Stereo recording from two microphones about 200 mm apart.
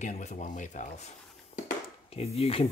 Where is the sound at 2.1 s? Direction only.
30° left (ahead or behind).